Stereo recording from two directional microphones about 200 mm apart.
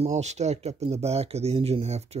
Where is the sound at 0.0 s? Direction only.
35° right (ahead or behind).